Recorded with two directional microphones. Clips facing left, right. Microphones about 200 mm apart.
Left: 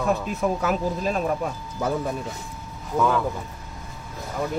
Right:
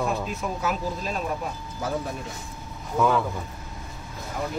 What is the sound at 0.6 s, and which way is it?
Speech, 50° left (ahead or behind).